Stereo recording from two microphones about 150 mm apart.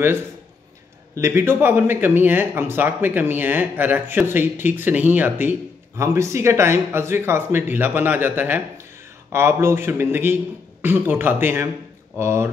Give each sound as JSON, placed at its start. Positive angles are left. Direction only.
{"t": 1.1, "sound": "speech", "side_deg": -15}